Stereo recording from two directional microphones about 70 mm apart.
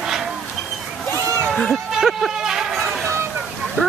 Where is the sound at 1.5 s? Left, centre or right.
Centre.